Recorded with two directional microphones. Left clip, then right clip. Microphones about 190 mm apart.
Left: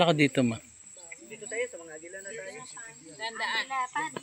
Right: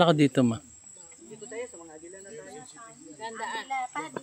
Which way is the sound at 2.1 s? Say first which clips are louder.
Left 5 dB; 60° right (ahead or behind).